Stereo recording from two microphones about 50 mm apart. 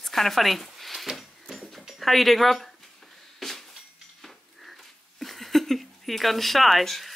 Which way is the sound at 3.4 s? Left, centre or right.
Centre.